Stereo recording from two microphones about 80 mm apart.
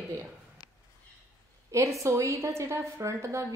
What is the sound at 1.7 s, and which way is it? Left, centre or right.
A woman's voice, right.